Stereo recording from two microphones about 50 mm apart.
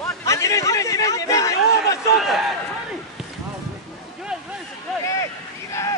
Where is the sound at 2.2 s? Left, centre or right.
Centre.